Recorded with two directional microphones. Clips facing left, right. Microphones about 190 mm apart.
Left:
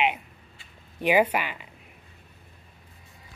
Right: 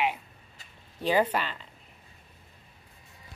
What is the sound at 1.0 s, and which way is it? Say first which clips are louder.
Speech: left 3 dB; 10° left (ahead or behind).